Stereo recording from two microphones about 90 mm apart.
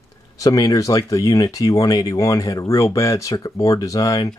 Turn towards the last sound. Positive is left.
turn(degrees=40)  # may be behind; listen again after turning